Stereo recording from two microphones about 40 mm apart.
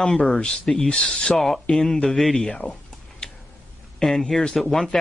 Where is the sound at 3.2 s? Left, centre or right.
Centre.